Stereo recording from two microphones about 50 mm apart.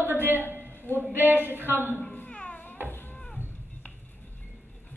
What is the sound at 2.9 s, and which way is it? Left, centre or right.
Music, left.